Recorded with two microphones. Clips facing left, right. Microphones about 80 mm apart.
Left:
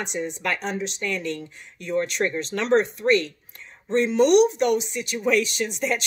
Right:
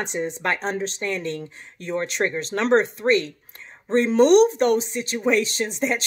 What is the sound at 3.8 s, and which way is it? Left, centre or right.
Speech, right.